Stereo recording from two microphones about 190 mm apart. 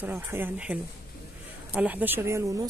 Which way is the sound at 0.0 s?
10° right (ahead or behind).